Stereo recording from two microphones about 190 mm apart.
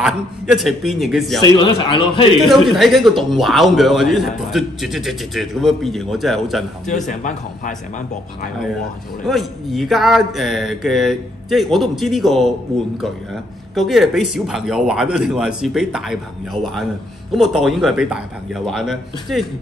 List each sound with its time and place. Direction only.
0.0 s a man's voice: centre (ahead or behind)
1.4 s a man's voice: 20° left (ahead or behind)
2.5 s a man's voice: centre (ahead or behind)
7.1 s a man's voice: 40° left (ahead or behind)
9.2 s a man's voice: centre (ahead or behind)
17.3 s a man's voice: centre (ahead or behind)